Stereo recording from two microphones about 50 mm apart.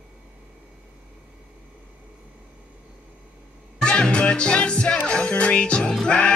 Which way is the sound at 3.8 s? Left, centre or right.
Centre.